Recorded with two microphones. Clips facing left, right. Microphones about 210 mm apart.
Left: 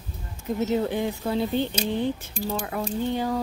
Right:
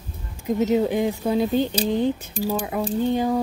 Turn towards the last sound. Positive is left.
turn(degrees=-15)  # may be behind; listen again after turning